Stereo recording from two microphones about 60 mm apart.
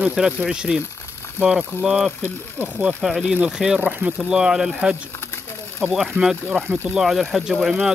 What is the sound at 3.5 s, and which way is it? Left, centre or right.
Speech, centre.